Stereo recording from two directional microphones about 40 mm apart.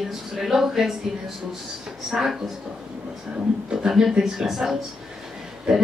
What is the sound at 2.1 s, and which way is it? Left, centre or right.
Speech, centre.